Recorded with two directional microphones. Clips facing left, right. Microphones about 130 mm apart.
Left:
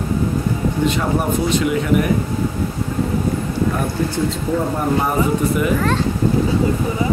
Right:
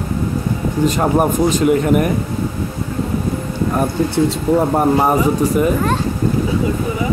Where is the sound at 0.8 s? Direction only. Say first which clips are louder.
Right 6 dB; 45° right (ahead or behind).